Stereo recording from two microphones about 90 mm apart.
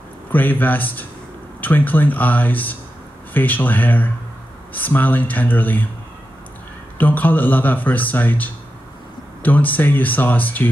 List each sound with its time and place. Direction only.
0.3 s speech: 20° left (ahead or behind)
7.0 s speech: 20° left (ahead or behind)